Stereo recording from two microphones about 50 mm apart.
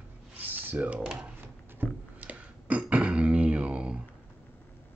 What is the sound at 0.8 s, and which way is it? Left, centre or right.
Speech, right.